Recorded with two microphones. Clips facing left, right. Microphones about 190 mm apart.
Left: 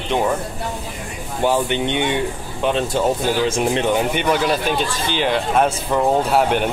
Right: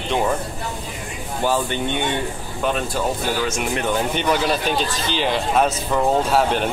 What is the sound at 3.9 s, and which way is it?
Speech, 10° left (ahead or behind).